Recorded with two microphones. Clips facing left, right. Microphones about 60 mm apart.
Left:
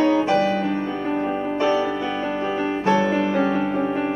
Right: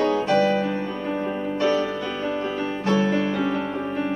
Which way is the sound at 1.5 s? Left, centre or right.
Centre.